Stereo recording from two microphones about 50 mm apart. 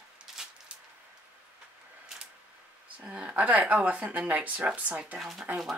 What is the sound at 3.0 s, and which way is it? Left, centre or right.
Speech, right.